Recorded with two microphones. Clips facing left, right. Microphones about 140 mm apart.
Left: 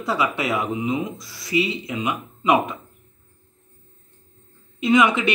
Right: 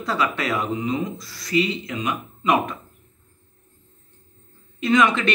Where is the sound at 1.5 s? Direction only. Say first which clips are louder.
Right 1 dB; 15° left (ahead or behind).